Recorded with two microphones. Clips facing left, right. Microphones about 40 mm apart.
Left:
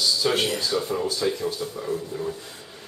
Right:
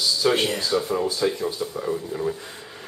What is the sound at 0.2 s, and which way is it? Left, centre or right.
Speech, centre.